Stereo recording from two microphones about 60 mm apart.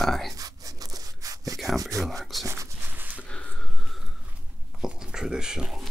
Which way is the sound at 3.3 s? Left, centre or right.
Left.